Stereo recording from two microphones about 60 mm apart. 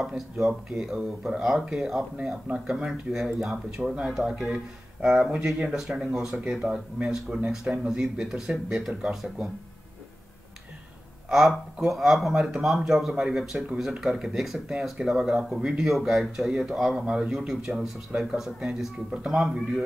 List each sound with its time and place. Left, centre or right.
0.1 s speech: centre
11.2 s speech: centre